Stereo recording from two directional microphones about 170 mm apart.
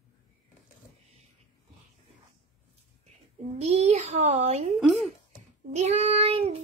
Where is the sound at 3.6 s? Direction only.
40° right (ahead or behind).